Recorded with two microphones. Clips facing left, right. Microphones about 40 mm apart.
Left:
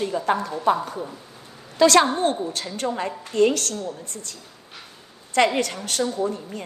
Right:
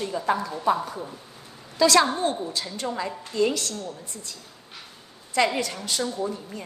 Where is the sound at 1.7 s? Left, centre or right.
Left.